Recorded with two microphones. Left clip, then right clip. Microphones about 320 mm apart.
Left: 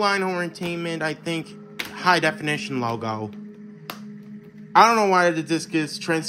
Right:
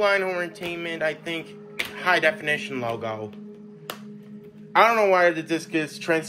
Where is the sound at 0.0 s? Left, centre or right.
Centre.